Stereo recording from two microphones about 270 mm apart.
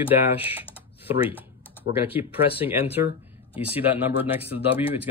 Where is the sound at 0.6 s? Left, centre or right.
Centre.